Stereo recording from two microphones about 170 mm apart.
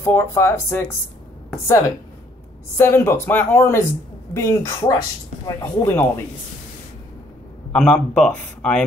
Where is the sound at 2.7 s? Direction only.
15° left (ahead or behind).